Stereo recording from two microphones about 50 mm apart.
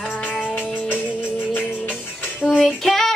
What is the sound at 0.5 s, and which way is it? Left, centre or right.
Music, left.